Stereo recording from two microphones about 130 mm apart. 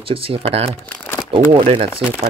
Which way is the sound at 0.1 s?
45° right (ahead or behind).